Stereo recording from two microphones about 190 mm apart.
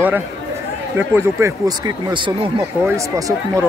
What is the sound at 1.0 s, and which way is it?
Speech, 15° right (ahead or behind).